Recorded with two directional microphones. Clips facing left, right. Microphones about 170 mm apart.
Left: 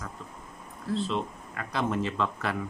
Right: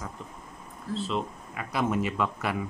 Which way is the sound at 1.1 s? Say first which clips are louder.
Even; 5° right (ahead or behind).